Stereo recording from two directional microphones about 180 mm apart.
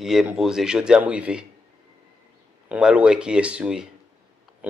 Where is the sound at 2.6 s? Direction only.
5° right (ahead or behind).